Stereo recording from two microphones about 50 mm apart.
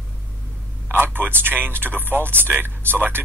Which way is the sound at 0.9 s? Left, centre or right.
Right.